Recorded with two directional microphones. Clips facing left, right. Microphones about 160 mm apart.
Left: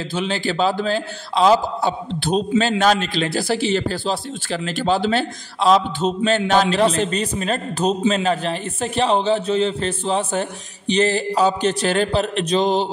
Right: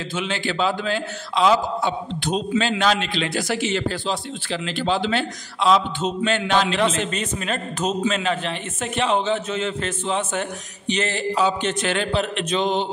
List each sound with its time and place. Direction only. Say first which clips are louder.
0.1 s a man's voice: left 3 dB; 35° left (ahead or behind)